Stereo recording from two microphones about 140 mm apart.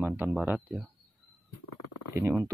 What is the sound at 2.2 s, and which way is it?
Speech, 20° right (ahead or behind).